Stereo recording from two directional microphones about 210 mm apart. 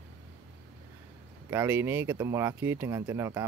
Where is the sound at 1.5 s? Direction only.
10° right (ahead or behind).